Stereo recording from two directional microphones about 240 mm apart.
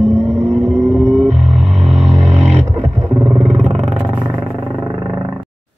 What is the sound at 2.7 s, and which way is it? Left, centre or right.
Vehicle, centre.